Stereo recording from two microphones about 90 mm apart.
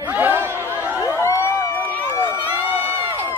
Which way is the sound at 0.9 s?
35° left (ahead or behind).